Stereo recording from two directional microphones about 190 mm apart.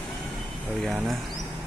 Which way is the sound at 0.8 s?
Centre (ahead or behind).